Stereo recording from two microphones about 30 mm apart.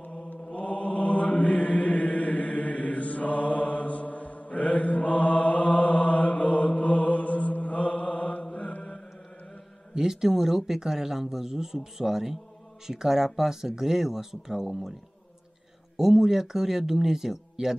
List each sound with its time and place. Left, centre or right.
0.6 s mantra: left
9.9 s speech: centre
16.0 s speech: centre